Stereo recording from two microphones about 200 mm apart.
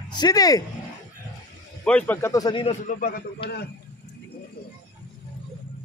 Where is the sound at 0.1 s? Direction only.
20° left (ahead or behind).